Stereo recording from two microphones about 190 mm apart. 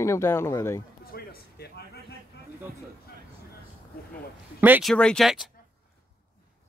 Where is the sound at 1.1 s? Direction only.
55° left (ahead or behind).